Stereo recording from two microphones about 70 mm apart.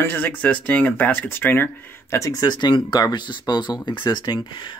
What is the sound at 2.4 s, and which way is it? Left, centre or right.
Speech, left.